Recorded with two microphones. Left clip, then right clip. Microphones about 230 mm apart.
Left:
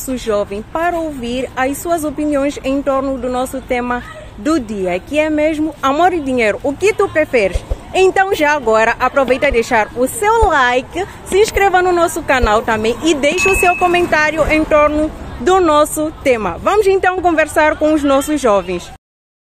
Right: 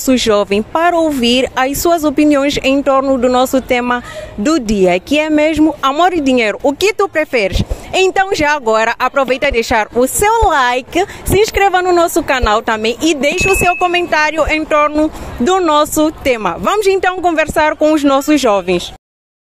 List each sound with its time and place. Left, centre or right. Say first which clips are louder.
0.0 s speech: right 6 dB; right